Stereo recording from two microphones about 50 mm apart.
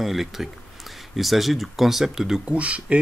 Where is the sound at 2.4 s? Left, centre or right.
Right.